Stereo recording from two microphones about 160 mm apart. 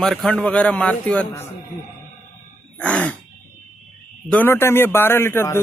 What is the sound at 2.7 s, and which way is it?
Throat clearing, 10° left (ahead or behind).